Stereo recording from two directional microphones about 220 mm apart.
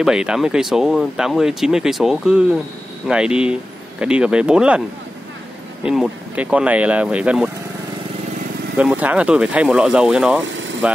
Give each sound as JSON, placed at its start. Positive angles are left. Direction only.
{"t": 0.0, "sound": "speech", "side_deg": -5}
{"t": 5.9, "sound": "speech", "side_deg": -5}
{"t": 8.7, "sound": "speech", "side_deg": -5}
{"t": 10.4, "sound": "vehicle", "side_deg": -60}